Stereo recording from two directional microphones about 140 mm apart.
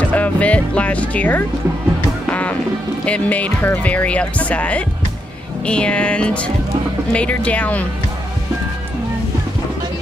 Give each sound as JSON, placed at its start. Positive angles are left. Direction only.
{"t": 0.1, "sound": "speech", "side_deg": 10}
{"t": 2.2, "sound": "music", "side_deg": 10}
{"t": 3.1, "sound": "speech", "side_deg": 10}